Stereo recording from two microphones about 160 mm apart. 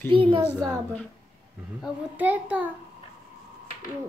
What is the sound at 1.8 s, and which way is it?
Speech, 10° right (ahead or behind).